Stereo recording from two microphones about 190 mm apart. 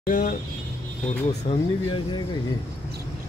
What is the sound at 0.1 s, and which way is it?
Speech, 50° left (ahead or behind).